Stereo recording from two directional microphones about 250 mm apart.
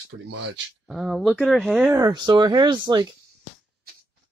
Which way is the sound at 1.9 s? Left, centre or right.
Centre.